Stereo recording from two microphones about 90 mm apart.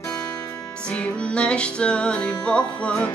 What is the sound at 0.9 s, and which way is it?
Music, 15° left (ahead or behind).